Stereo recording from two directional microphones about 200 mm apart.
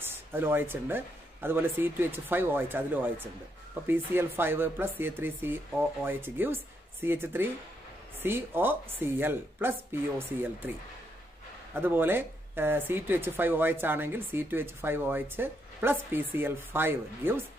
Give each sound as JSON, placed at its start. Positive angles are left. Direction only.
{"t": 0.0, "sound": "speech", "side_deg": -10}
{"t": 11.7, "sound": "speech", "side_deg": -10}